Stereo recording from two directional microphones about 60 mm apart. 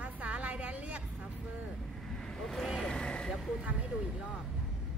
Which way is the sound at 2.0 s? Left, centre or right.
Centre.